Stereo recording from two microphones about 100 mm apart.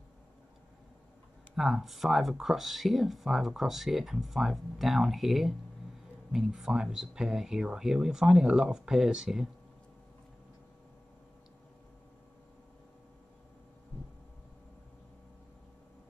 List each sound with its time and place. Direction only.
1.5 s speech: centre (ahead or behind)